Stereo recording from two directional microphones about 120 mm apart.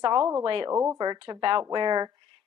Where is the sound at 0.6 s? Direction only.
25° right (ahead or behind).